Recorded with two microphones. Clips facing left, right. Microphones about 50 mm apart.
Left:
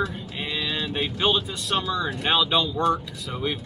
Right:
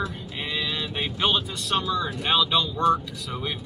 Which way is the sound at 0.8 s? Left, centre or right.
Centre.